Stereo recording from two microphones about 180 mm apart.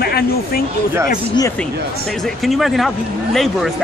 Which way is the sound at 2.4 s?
Centre (ahead or behind).